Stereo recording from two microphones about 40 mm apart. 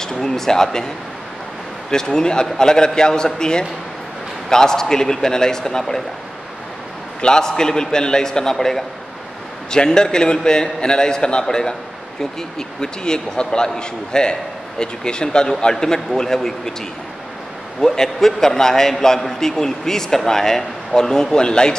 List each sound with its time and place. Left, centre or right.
0.0 s a man's voice: centre
7.2 s a man's voice: centre
17.7 s a man's voice: centre